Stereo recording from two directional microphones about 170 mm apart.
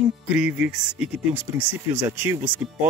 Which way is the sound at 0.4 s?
5° right (ahead or behind).